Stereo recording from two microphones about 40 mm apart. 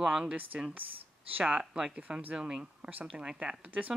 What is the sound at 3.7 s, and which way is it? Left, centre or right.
Speech, right.